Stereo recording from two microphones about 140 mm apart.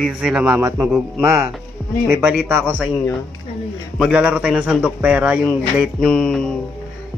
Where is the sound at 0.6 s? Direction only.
20° right (ahead or behind).